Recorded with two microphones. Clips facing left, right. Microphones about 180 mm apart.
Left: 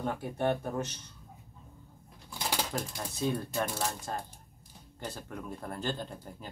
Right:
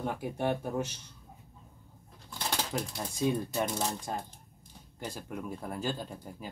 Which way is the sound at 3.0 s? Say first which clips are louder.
Right 3 dB; 10° right (ahead or behind).